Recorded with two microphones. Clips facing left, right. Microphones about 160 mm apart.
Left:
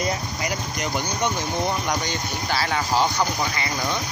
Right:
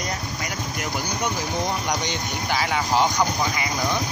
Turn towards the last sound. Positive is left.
turn(degrees=-15)  # may be behind; listen again after turning